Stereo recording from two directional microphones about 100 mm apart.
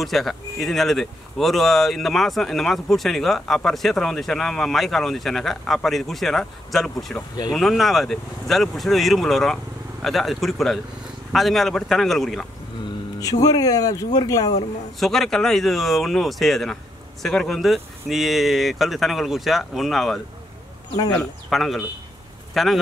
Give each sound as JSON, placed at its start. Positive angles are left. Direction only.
{"t": 0.0, "sound": "speech", "side_deg": 0}
{"t": 13.2, "sound": "speech", "side_deg": 35}
{"t": 15.0, "sound": "speech", "side_deg": 5}
{"t": 21.2, "sound": "speech", "side_deg": 0}